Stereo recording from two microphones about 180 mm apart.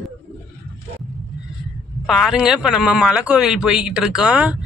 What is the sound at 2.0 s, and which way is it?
Speech, centre (ahead or behind).